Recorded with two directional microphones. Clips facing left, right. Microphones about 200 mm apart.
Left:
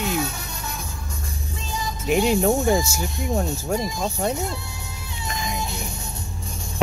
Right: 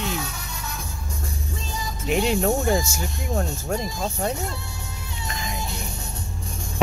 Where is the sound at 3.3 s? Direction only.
10° left (ahead or behind).